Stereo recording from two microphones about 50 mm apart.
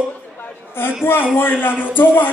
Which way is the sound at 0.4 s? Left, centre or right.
Left.